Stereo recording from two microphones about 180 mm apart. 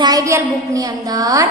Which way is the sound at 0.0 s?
20° right (ahead or behind).